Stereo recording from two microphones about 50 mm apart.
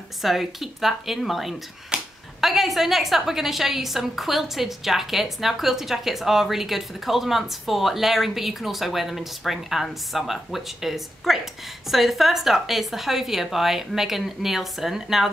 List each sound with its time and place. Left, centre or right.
0.2 s a woman's voice: centre
1.9 s a sound: centre
2.4 s a woman's voice: centre